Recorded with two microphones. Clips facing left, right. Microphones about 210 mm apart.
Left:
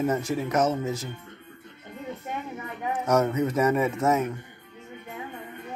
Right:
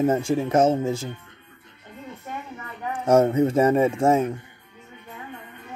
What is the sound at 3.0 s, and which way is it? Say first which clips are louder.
Speech: right 6 dB; 30° right (ahead or behind).